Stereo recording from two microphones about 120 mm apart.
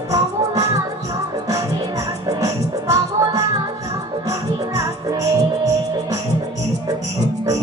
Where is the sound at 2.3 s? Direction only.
30° right (ahead or behind).